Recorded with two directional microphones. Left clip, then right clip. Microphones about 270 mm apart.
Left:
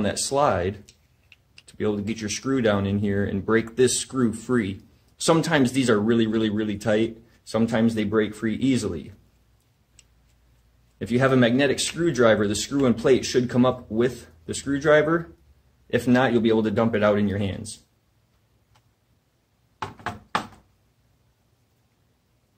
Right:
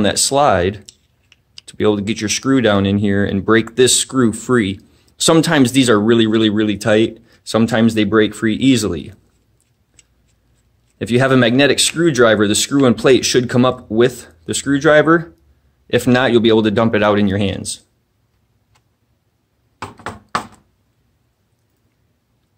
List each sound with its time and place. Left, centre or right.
0.0 s speech: right
11.0 s speech: right